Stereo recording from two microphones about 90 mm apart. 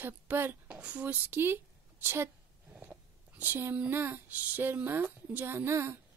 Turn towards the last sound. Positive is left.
turn(degrees=-30)  # may be behind; listen again after turning